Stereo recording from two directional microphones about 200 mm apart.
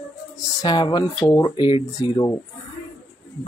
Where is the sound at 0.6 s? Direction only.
20° left (ahead or behind).